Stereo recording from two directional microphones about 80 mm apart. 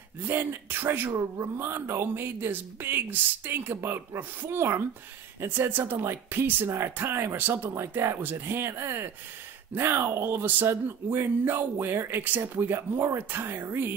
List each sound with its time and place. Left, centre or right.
0.2 s speech: right